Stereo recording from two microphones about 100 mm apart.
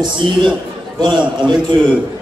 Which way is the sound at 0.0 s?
50° right (ahead or behind).